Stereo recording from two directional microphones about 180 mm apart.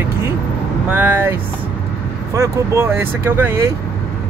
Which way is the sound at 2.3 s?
15° right (ahead or behind).